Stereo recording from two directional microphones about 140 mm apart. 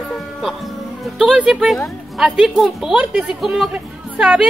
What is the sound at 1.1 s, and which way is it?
A woman's voice, centre (ahead or behind).